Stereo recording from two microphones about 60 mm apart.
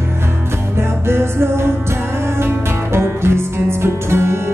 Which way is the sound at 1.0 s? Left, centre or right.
Right.